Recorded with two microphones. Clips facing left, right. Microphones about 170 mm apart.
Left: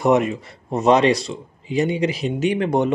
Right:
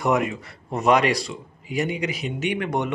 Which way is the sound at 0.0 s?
25° left (ahead or behind).